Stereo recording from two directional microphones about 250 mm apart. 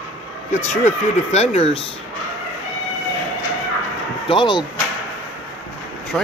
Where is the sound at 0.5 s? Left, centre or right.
Left.